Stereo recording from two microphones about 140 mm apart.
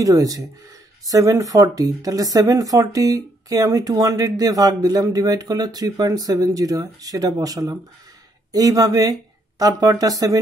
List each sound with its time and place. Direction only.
0.0 s speech: 25° right (ahead or behind)